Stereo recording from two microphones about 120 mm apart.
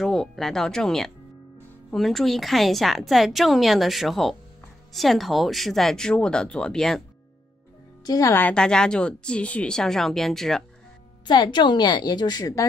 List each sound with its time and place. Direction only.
0.0 s a woman's voice: 5° left (ahead or behind)
8.0 s speech: 30° left (ahead or behind)
8.4 s speech: 10° left (ahead or behind)
11.2 s a woman's voice: 40° left (ahead or behind)